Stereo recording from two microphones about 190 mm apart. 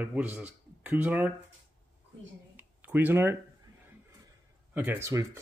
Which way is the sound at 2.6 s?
10° right (ahead or behind).